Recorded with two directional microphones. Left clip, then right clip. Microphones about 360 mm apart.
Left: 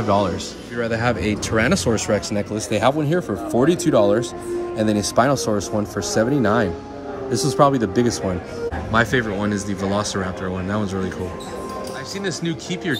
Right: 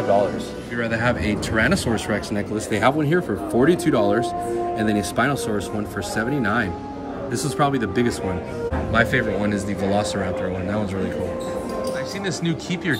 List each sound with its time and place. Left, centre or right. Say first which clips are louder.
0.7 s speech: left 1 dB; centre
12.3 s speech: even; centre